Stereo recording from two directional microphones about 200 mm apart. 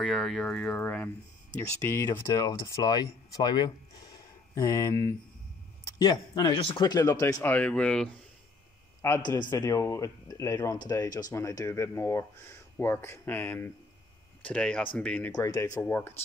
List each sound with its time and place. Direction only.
0.0 s speech: centre (ahead or behind)
9.0 s speech: 15° left (ahead or behind)